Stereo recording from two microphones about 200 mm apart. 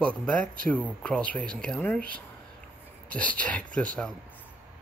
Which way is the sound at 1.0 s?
5° left (ahead or behind).